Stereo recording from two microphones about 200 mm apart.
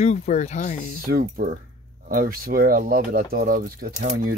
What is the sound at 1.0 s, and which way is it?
Speech, 40° right (ahead or behind).